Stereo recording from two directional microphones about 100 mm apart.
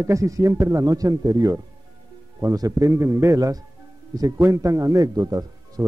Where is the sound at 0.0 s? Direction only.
30° right (ahead or behind).